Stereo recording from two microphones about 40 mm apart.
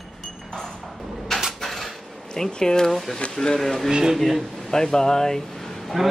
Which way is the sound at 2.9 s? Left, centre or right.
Centre.